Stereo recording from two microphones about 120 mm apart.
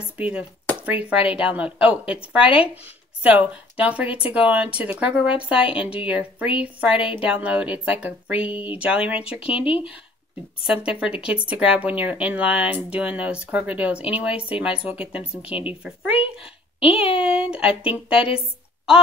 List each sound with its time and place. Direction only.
0.2 s speech: 10° right (ahead or behind)
2.4 s speech: 50° left (ahead or behind)
2.7 s speech: 15° right (ahead or behind)
9.7 s speech: 50° left (ahead or behind)
10.7 s speech: 5° right (ahead or behind)
17.2 s speech: 10° right (ahead or behind)